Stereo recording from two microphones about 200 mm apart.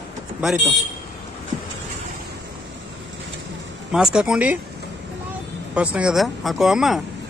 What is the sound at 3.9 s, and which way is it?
Speech, 5° right (ahead or behind).